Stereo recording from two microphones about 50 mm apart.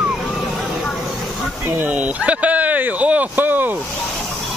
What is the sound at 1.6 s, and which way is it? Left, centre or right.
Speech, right.